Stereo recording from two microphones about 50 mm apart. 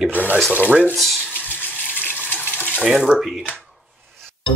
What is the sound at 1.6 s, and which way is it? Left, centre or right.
Water, left.